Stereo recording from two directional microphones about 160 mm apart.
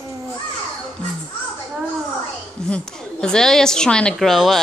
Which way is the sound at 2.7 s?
5° left (ahead or behind).